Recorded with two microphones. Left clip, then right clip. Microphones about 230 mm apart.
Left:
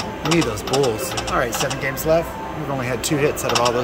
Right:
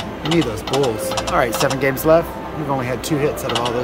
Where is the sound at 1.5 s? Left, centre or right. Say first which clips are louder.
Right 5 dB; right.